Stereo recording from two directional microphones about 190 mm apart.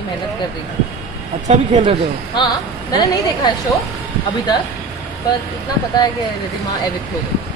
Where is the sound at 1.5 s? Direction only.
35° right (ahead or behind).